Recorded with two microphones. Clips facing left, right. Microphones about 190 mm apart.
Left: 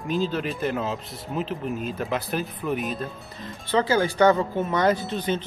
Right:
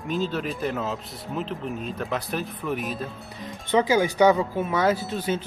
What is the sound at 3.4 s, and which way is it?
Speech, 15° right (ahead or behind).